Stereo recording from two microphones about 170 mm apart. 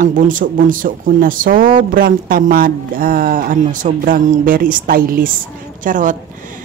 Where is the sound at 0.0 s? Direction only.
50° right (ahead or behind).